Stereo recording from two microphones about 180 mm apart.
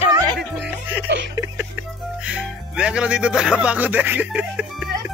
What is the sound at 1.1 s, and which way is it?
Speech, 85° right.